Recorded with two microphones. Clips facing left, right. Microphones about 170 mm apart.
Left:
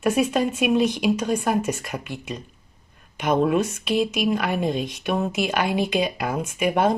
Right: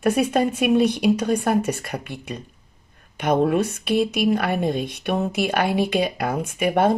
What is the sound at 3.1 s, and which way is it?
A woman's voice, 55° right (ahead or behind).